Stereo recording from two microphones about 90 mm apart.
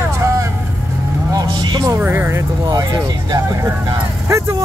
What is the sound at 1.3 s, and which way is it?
Vehicle, 50° right (ahead or behind).